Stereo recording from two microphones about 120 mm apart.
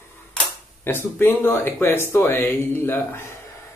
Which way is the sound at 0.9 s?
15° left (ahead or behind).